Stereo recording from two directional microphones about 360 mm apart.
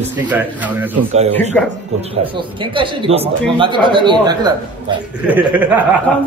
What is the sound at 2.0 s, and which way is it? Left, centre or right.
A man's voice, centre.